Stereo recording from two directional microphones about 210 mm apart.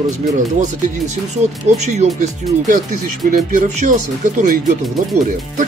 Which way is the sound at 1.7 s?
30° right (ahead or behind).